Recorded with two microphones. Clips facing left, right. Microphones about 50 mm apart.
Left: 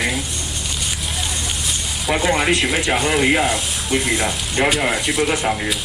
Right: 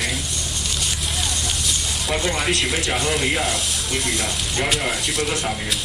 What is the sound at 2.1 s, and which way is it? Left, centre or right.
Speech, left.